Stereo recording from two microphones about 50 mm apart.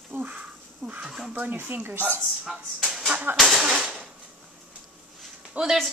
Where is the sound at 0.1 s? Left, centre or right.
Right.